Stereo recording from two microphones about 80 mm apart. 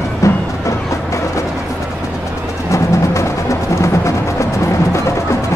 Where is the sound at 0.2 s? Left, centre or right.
Left.